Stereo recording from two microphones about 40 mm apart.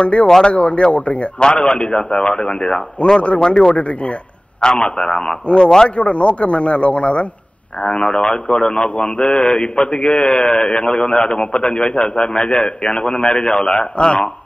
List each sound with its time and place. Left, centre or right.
0.0 s a man's voice: left
1.4 s a man's voice: left
3.3 s a man's voice: centre
3.7 s a man's voice: left
4.6 s a man's voice: centre
5.9 s a man's voice: left